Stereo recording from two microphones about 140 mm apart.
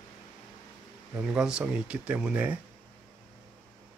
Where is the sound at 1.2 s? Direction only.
5° right (ahead or behind).